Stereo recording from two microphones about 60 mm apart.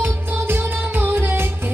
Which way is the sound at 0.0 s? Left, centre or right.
Right.